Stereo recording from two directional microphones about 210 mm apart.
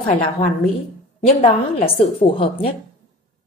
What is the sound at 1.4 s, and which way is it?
Speech, 25° left (ahead or behind).